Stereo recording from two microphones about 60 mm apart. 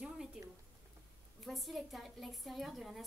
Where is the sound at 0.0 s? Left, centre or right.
Centre.